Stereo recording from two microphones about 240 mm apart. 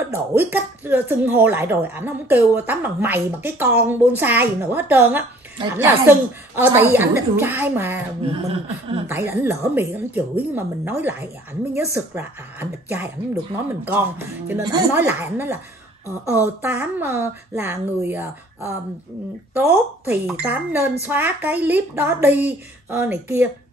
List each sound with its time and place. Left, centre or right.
0.4 s speech: centre
8.2 s a sound: right
9.0 s speech: centre
19.7 s speech: centre